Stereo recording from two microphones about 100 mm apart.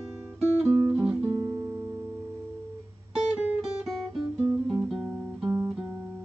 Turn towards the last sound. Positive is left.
turn(degrees=-10)  # may be behind; listen again after turning